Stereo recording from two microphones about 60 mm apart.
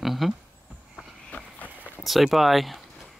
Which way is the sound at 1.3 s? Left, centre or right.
Left.